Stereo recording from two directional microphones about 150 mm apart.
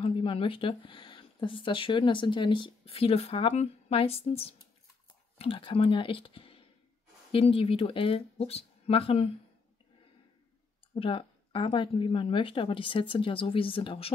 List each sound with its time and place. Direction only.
0.0 s speech: 35° left (ahead or behind)
11.0 s speech: 35° left (ahead or behind)